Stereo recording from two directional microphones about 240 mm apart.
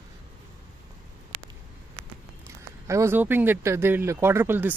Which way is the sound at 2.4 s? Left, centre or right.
Centre.